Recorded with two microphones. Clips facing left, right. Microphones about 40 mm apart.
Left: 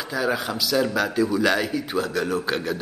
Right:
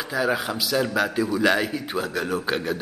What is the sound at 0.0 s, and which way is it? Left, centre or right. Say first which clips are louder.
A man's voice: right 1 dB; centre.